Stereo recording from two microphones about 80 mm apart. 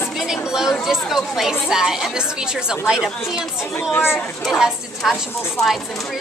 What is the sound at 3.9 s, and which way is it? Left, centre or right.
Speech, left.